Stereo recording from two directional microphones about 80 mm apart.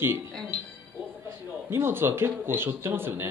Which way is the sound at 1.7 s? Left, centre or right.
Right.